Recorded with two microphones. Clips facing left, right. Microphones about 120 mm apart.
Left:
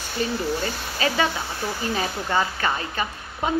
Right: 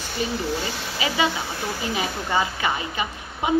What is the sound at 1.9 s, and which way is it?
A woman's voice, 15° right (ahead or behind).